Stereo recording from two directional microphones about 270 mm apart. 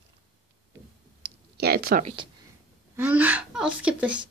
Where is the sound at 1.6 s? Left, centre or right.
Right.